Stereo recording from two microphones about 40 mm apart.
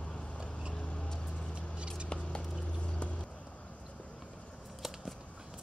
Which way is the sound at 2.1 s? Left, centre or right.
Left.